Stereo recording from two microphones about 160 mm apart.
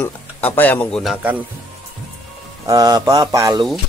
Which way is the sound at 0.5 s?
10° left (ahead or behind).